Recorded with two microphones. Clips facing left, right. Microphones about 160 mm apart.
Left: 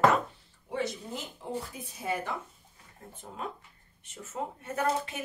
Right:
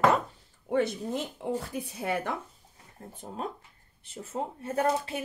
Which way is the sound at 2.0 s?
65° right (ahead or behind).